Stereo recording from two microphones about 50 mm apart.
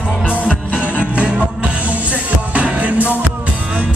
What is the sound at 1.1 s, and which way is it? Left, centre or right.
Music, centre.